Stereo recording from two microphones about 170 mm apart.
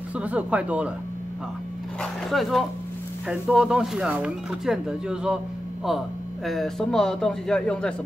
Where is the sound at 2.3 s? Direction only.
Centre (ahead or behind).